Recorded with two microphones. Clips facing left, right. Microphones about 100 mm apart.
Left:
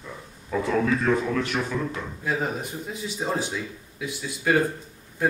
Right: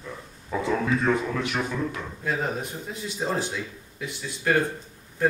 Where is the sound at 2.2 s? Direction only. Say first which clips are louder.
Even; centre (ahead or behind).